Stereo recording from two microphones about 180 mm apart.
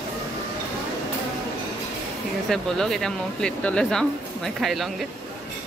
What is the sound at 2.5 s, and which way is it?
Speech, centre (ahead or behind).